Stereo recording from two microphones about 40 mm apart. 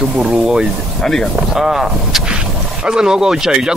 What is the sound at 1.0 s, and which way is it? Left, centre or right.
Speech, centre.